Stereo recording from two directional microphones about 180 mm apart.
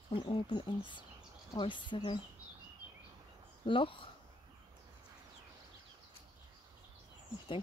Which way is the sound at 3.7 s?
30° left (ahead or behind).